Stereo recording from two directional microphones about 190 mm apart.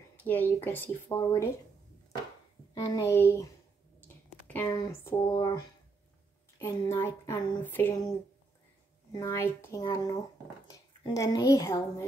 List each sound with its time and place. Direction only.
0.2 s speech: 10° left (ahead or behind)
2.7 s speech: 20° left (ahead or behind)
4.5 s speech: 15° left (ahead or behind)
6.6 s speech: 15° left (ahead or behind)
9.1 s speech: 15° left (ahead or behind)